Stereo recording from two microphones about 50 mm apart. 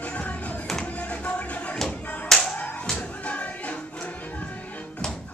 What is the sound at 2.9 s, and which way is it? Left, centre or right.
Music, left.